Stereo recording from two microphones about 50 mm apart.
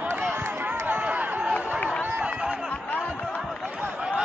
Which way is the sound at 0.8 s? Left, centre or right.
Right.